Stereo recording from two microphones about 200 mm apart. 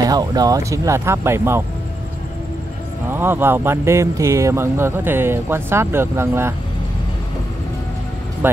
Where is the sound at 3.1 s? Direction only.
10° right (ahead or behind).